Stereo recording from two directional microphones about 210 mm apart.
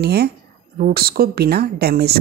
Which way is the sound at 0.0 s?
50° right (ahead or behind).